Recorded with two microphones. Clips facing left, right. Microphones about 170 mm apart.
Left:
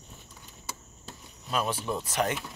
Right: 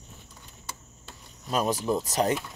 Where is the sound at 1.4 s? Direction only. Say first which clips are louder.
Right 4 dB; 40° right (ahead or behind).